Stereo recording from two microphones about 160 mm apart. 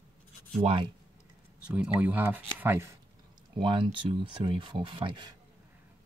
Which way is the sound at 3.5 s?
30° right (ahead or behind).